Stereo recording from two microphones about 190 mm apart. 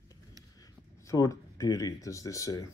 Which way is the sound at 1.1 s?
15° left (ahead or behind).